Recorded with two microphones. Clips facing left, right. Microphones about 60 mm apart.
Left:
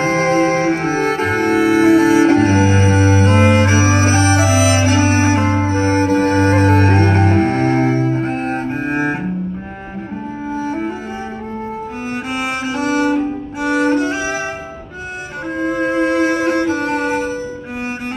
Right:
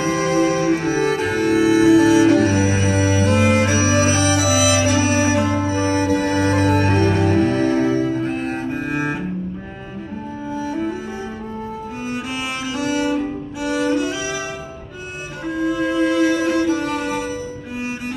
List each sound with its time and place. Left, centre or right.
0.0 s music: left
10.5 s music: left
12.1 s cello: left
15.5 s music: left